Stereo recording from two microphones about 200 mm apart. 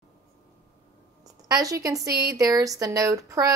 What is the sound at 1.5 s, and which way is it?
A woman's voice, 15° right (ahead or behind).